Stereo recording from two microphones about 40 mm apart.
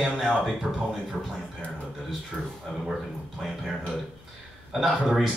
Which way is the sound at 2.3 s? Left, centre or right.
Centre.